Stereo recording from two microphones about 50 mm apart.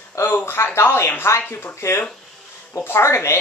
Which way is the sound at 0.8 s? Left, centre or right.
Left.